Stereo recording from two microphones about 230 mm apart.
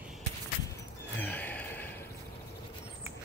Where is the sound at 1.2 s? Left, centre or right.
Centre.